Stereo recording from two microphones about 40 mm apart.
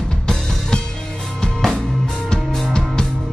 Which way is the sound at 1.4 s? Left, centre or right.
Centre.